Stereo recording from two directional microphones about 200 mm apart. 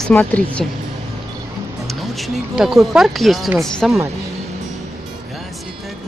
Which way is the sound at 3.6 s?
Centre (ahead or behind).